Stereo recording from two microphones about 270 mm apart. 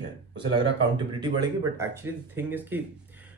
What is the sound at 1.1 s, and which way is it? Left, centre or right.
Speech, centre.